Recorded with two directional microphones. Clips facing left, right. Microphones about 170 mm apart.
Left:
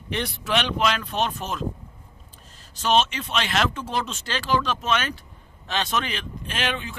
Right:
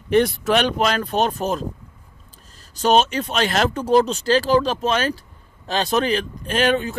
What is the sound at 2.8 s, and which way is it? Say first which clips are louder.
Speech: right 5 dB; 40° right (ahead or behind).